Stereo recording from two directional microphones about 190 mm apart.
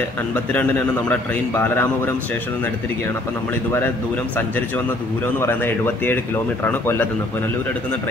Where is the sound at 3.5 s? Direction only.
10° left (ahead or behind).